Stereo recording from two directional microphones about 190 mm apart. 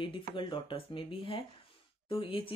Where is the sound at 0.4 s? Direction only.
25° left (ahead or behind).